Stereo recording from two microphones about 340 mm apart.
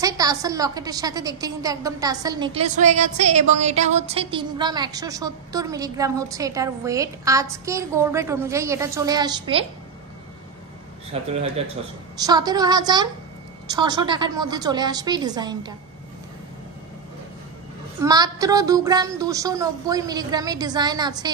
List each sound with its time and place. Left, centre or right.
0.0 s a woman's voice: centre
11.1 s a man's voice: centre
18.0 s a woman's voice: centre